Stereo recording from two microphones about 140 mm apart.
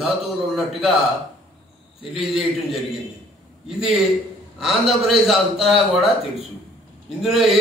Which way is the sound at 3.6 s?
Centre (ahead or behind).